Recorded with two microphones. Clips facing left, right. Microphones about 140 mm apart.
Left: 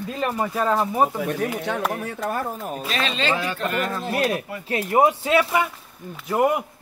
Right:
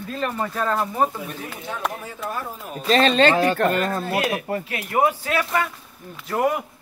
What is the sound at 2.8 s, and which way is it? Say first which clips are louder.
Speech: right 9 dB; 40° right (ahead or behind).